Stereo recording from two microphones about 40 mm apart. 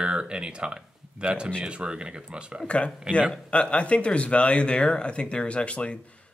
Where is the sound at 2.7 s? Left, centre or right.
Left.